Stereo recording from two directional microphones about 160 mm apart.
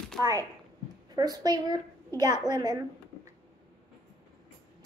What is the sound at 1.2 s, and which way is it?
Speech, 25° right (ahead or behind).